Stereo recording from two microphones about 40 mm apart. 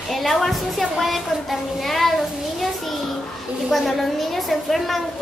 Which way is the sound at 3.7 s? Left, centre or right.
Centre.